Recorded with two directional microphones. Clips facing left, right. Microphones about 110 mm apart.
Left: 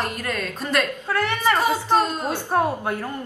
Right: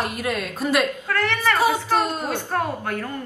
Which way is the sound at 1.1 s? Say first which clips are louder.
Left 1 dB; 15° left (ahead or behind).